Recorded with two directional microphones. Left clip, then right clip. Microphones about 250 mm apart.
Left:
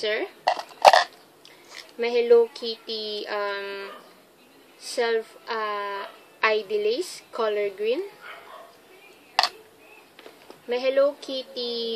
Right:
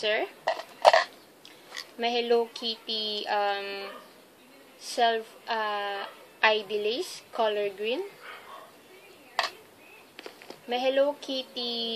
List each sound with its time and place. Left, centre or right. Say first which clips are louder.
0.0 s speech: left 1 dB; centre
0.5 s burping: left 5 dB; left
2.0 s a woman's voice: left 7 dB; centre
4.9 s a woman's voice: left 1 dB; centre
10.7 s a woman's voice: left 3 dB; centre